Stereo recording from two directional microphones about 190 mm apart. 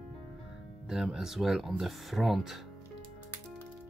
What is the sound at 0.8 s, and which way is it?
Speech, 5° right (ahead or behind).